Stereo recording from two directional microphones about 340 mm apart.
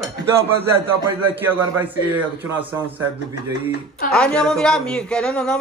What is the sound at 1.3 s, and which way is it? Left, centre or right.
A man's voice, centre.